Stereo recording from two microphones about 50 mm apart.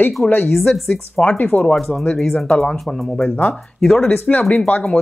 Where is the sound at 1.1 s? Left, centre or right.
Left.